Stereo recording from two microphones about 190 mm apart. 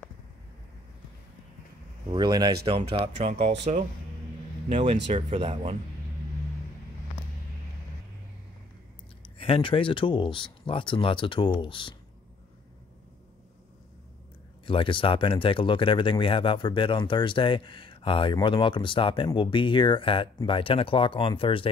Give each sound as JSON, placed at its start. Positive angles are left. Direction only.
{"t": 2.0, "sound": "speech", "side_deg": -25}
{"t": 9.2, "sound": "speech", "side_deg": 30}
{"t": 14.7, "sound": "speech", "side_deg": 25}